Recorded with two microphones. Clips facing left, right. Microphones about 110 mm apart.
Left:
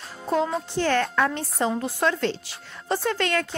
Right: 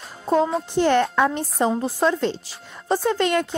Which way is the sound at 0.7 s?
20° right (ahead or behind).